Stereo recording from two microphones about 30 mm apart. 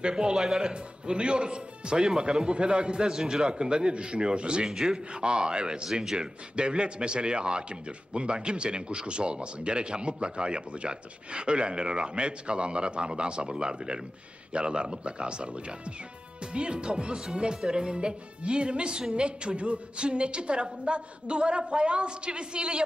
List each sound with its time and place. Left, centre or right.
0.0 s speech: right
3.1 s a man's voice: centre
3.4 s speech: right
4.6 s a man's voice: centre
5.1 s speech: right